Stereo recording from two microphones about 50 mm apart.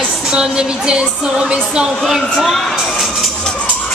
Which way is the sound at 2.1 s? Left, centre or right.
Centre.